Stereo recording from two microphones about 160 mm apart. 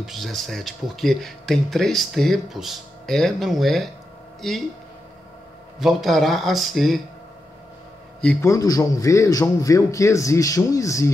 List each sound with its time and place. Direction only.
0.0 s speech: centre (ahead or behind)
5.8 s speech: centre (ahead or behind)
8.2 s a man's voice: 5° left (ahead or behind)
8.5 s a man's voice: 20° left (ahead or behind)